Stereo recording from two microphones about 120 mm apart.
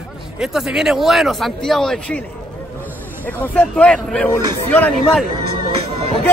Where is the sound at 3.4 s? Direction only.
10° left (ahead or behind).